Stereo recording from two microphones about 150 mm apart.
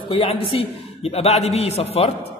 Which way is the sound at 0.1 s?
35° left (ahead or behind).